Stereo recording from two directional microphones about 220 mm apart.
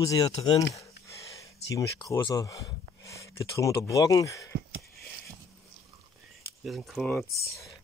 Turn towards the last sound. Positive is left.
turn(degrees=5)  # may be behind; listen again after turning